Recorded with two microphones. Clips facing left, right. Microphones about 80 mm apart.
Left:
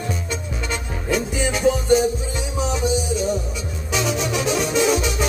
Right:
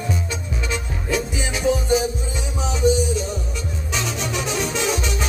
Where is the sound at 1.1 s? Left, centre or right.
Centre.